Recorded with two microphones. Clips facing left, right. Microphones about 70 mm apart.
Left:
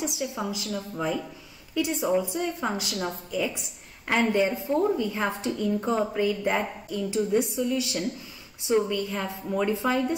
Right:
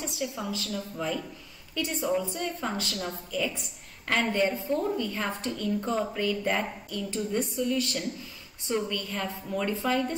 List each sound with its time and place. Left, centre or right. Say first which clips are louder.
0.0 s a woman's voice: left 3 dB; centre